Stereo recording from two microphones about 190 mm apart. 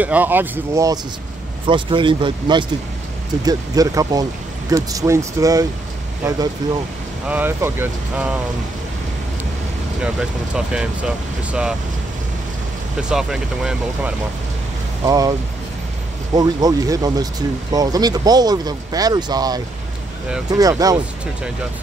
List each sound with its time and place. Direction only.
0.0 s speech: 10° right (ahead or behind)
1.7 s speech: 25° right (ahead or behind)
7.2 s speech: 10° right (ahead or behind)
10.0 s speech: 5° right (ahead or behind)
13.1 s speech: 5° right (ahead or behind)
15.0 s speech: 20° right (ahead or behind)
16.3 s speech: 20° right (ahead or behind)